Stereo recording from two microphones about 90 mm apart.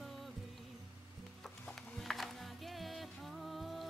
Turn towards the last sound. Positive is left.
turn(degrees=0)  # may be behind; listen again after turning